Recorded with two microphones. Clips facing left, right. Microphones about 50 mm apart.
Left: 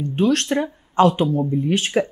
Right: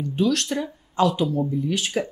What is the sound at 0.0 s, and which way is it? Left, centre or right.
Speech, left.